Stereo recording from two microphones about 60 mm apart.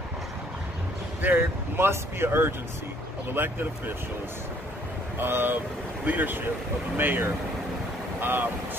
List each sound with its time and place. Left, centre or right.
1.2 s speech: right
5.2 s speech: right